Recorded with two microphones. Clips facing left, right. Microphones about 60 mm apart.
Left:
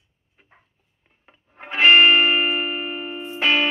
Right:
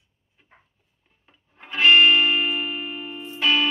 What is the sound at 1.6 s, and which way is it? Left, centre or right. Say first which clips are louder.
Music: left 2 dB; left.